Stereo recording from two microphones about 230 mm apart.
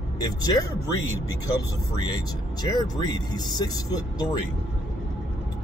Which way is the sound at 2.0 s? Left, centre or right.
Centre.